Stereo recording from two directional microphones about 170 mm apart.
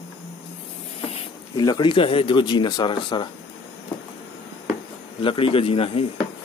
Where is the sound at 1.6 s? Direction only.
25° left (ahead or behind).